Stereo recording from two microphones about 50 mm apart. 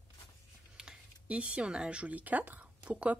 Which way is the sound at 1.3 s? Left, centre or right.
Right.